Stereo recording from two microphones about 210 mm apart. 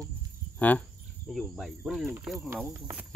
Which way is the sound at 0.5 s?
5° left (ahead or behind).